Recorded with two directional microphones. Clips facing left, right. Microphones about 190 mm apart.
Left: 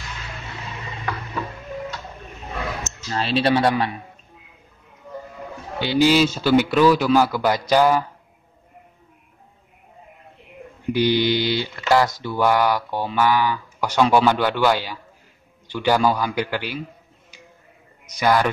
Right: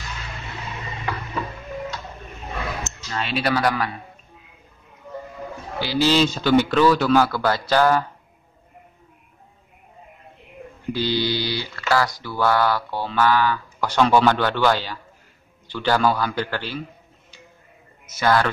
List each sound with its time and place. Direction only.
2.8 s speech: 35° left (ahead or behind)
5.8 s speech: 20° left (ahead or behind)
10.9 s speech: 15° left (ahead or behind)
18.1 s speech: 15° left (ahead or behind)